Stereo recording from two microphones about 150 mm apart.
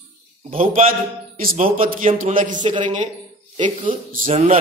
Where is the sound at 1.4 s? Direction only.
70° right (ahead or behind); by 3.1 s 55° right (ahead or behind).